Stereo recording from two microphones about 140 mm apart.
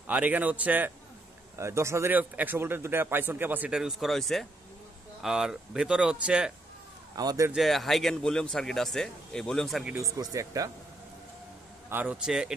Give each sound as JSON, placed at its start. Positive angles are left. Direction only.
{"t": 0.0, "sound": "a man's voice", "side_deg": -10}
{"t": 7.2, "sound": "speech", "side_deg": -25}
{"t": 7.5, "sound": "speech", "side_deg": 0}
{"t": 9.9, "sound": "speech", "side_deg": -25}
{"t": 11.9, "sound": "speech", "side_deg": -10}